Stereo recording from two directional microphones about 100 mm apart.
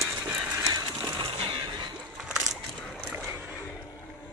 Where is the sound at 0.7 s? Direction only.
45° right (ahead or behind).